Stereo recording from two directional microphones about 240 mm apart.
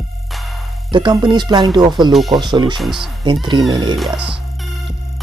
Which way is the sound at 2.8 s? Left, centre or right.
Centre.